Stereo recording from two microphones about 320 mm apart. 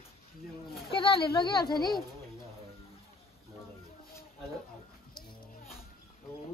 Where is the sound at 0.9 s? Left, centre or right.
Centre.